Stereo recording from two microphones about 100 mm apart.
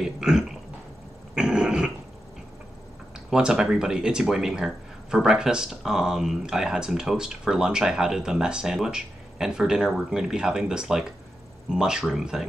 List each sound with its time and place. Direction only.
0.0 s speech: 5° right (ahead or behind)
1.3 s cough: 10° right (ahead or behind)
3.3 s speech: 5° right (ahead or behind)